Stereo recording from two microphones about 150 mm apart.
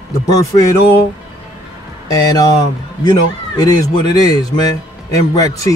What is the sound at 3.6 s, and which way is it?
Speech, 25° left (ahead or behind).